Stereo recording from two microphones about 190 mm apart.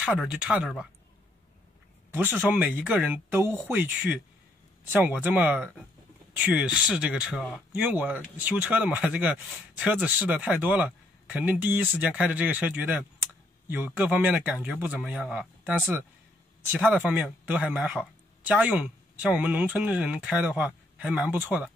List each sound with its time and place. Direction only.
0.0 s speech: 5° right (ahead or behind)
2.0 s speech: 10° right (ahead or behind)
3.5 s speech: centre (ahead or behind)